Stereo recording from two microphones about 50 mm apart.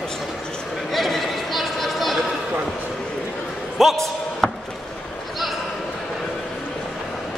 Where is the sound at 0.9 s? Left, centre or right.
Centre.